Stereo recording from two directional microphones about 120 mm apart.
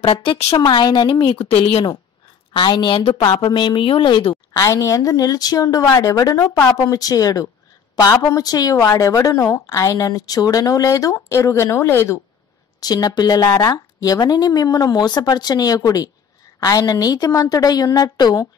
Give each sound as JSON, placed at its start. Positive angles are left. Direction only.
{"t": 0.0, "sound": "a woman's voice", "side_deg": 45}
{"t": 4.6, "sound": "a woman's voice", "side_deg": 25}
{"t": 12.8, "sound": "speech", "side_deg": 35}